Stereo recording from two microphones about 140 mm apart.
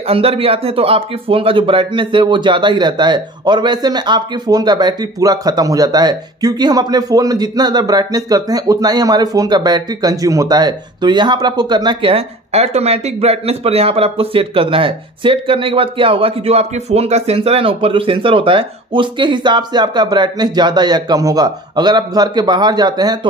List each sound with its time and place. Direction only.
0.0 s speech: 45° right (ahead or behind)